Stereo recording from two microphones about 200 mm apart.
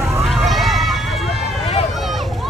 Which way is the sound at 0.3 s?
Centre (ahead or behind).